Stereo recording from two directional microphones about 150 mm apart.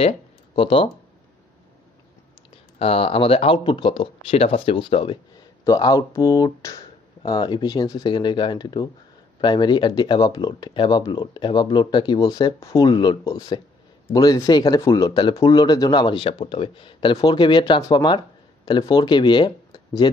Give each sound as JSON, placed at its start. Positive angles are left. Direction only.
{"t": 0.6, "sound": "speech", "side_deg": 35}
{"t": 2.8, "sound": "speech", "side_deg": 40}
{"t": 5.6, "sound": "speech", "side_deg": 25}